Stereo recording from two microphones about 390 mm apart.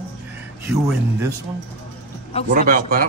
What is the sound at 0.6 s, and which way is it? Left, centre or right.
Speech, centre.